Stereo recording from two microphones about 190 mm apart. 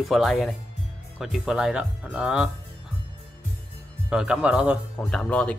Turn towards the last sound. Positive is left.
turn(degrees=5)  # may be behind; listen again after turning